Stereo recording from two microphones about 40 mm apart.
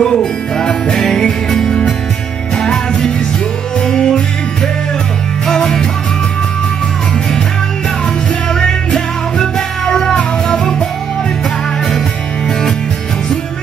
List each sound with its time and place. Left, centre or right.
0.0 s music: centre
5.5 s music: centre
8.5 s music: centre